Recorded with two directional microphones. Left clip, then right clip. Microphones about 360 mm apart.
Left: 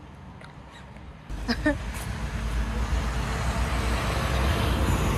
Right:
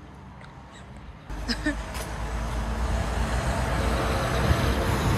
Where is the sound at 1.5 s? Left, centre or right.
Centre.